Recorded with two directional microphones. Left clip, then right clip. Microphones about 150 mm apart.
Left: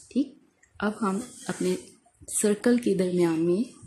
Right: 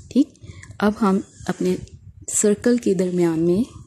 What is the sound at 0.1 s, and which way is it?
Speech, 60° right (ahead or behind).